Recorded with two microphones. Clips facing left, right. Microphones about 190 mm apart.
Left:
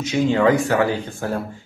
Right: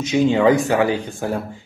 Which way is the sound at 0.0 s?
20° right (ahead or behind).